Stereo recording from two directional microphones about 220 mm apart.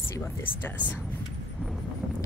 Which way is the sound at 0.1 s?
10° left (ahead or behind).